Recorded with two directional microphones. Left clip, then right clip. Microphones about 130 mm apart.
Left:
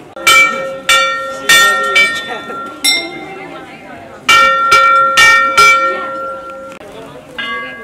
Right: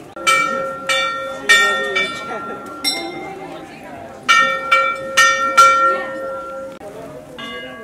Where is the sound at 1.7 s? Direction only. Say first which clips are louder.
Left 8 dB; 20° left (ahead or behind).